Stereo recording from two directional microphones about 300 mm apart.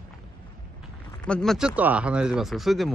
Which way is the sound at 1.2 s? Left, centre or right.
Centre.